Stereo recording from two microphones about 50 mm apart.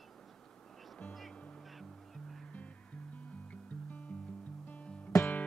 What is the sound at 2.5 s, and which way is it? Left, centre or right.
Music, left.